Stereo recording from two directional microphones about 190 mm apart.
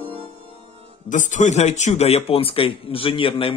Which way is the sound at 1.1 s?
40° left (ahead or behind).